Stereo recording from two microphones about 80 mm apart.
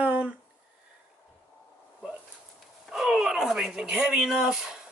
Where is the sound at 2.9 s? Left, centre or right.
Centre.